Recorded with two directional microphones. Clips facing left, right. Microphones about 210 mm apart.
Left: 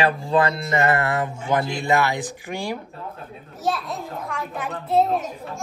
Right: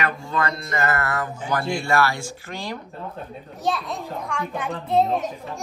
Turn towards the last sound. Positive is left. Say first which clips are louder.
# left 1 dB
turn(degrees=5)  # may be behind; listen again after turning